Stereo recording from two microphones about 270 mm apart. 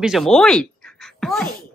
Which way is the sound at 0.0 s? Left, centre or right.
Centre.